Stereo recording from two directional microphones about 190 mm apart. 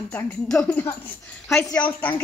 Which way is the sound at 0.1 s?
10° left (ahead or behind).